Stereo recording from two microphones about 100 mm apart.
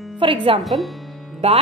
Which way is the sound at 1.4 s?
90° right.